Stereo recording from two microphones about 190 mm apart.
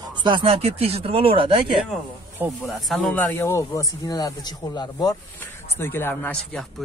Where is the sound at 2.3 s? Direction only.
Centre (ahead or behind).